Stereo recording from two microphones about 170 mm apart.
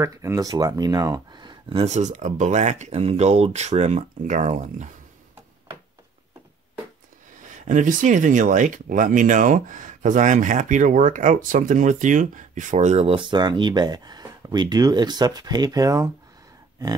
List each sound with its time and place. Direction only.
0.0 s speech: 20° right (ahead or behind); by 4.8 s 45° right (ahead or behind)
7.6 s speech: 50° right (ahead or behind); by 16.1 s 20° right (ahead or behind)